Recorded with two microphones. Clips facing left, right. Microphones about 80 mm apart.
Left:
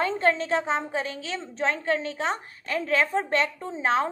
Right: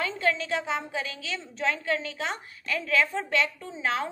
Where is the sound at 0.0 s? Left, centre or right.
Left.